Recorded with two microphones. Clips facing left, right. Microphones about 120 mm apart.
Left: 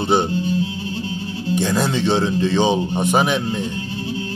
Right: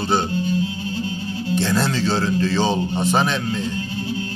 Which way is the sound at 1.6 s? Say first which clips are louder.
Left 1 dB; 15° left (ahead or behind).